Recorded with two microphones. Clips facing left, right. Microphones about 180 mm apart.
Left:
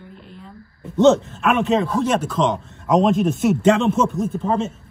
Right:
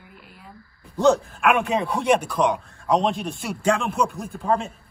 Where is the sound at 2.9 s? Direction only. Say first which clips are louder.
Left 6 dB; centre (ahead or behind).